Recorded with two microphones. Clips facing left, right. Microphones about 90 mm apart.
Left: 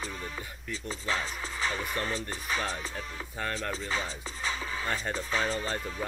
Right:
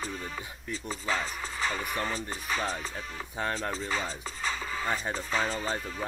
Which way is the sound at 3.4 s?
20° right (ahead or behind).